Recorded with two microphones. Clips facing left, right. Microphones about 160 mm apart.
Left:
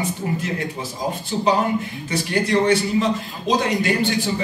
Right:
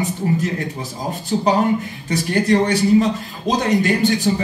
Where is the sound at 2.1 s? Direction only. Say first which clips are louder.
Right 3 dB; 40° right (ahead or behind).